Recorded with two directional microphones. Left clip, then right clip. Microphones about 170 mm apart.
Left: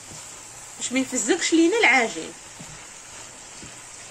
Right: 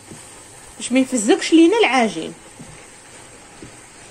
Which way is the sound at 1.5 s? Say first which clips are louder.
Right 4 dB; 10° left (ahead or behind).